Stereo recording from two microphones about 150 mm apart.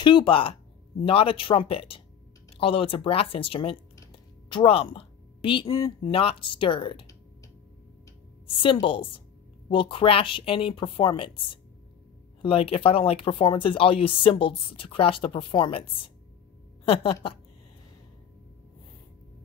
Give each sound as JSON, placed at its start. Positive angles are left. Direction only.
{"t": 0.0, "sound": "speech", "side_deg": 35}
{"t": 4.1, "sound": "a sound", "side_deg": 35}
{"t": 6.1, "sound": "speech", "side_deg": 35}
{"t": 8.8, "sound": "speech", "side_deg": 35}